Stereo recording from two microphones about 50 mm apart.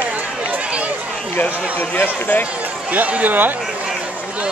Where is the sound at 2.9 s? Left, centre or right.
Right.